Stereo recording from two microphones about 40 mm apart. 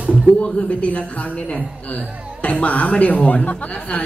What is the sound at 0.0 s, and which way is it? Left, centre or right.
Music, right.